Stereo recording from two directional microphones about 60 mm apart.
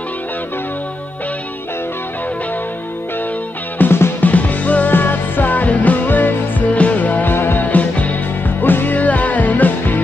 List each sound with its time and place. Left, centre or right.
3.7 s music: left